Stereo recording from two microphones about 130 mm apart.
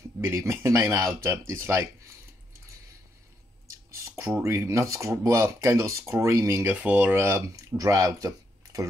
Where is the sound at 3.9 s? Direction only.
25° right (ahead or behind).